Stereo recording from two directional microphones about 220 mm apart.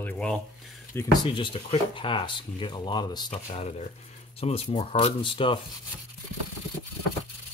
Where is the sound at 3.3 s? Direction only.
30° left (ahead or behind).